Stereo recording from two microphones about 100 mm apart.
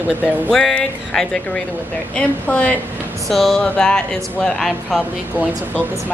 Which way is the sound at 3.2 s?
Centre (ahead or behind).